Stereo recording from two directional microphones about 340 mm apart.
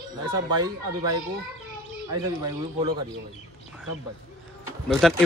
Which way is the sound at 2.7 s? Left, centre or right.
Centre.